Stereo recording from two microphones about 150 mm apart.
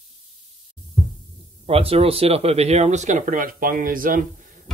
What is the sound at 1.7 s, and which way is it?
Speech, 40° right (ahead or behind).